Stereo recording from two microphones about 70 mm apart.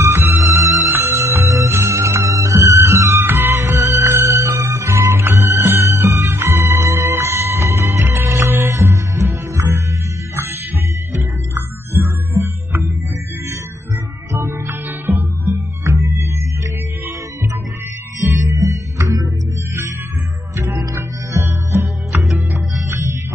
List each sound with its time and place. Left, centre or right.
0.0 s music: right
12.0 s music: right
14.3 s music: right
18.2 s music: right
20.5 s music: right
20.9 s music: right